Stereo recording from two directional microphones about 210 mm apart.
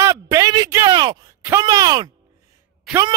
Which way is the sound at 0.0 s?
15° right (ahead or behind).